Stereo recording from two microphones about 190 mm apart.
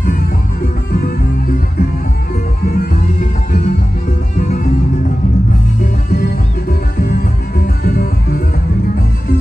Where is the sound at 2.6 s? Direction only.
50° left (ahead or behind).